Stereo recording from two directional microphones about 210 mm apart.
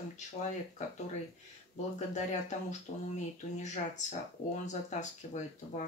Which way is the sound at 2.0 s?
35° left (ahead or behind).